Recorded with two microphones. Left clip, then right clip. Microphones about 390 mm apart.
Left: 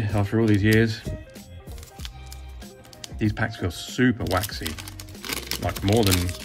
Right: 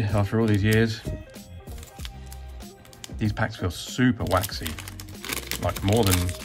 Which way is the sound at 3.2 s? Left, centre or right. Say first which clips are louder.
Left 1 dB; centre.